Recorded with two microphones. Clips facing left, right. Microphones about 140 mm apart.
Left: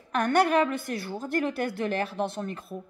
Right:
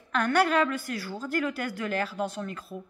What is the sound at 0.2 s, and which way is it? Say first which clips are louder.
A woman's voice: left 2 dB; 20° left (ahead or behind).